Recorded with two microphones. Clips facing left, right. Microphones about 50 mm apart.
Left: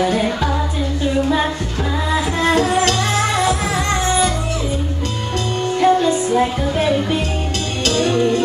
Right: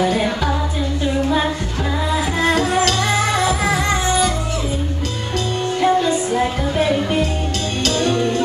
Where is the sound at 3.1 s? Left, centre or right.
Centre.